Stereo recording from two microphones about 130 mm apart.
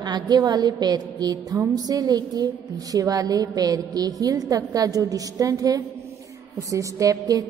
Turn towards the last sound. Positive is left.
turn(degrees=-25)  # may be behind; listen again after turning